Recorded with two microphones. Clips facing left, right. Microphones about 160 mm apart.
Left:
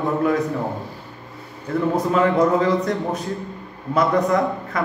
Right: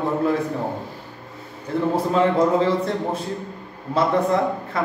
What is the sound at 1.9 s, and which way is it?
A man's voice, 30° right (ahead or behind).